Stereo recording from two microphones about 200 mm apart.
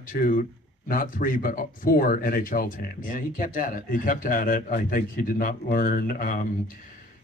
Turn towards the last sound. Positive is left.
turn(degrees=45)  # may be behind; listen again after turning